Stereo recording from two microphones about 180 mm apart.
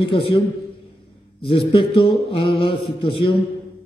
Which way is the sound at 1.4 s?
30° left (ahead or behind).